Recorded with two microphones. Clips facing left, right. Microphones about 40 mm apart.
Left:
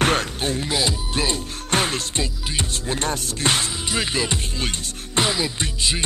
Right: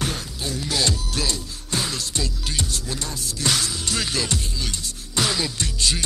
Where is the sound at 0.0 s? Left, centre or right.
Left.